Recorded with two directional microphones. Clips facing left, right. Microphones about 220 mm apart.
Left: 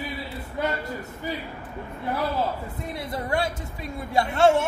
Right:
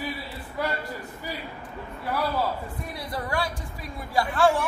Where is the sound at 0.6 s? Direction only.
25° left (ahead or behind).